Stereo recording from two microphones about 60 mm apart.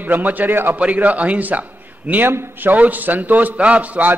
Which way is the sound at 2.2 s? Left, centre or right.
Right.